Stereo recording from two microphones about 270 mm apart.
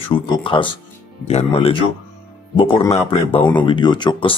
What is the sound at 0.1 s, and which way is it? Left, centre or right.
Speech, centre.